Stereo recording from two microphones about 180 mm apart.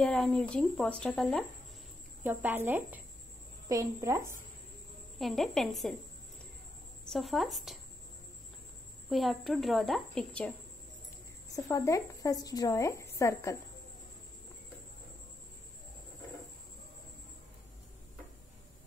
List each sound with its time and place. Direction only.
0.0 s speech: 5° left (ahead or behind)
2.2 s speech: 10° right (ahead or behind)
5.2 s speech: centre (ahead or behind)
7.1 s speech: centre (ahead or behind)
9.1 s speech: centre (ahead or behind)
11.5 s a woman's voice: 20° left (ahead or behind)